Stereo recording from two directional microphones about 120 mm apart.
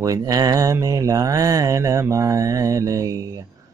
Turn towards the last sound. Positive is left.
turn(degrees=-30)  # may be behind; listen again after turning